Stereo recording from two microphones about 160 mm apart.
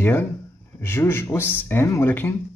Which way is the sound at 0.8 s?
15° left (ahead or behind).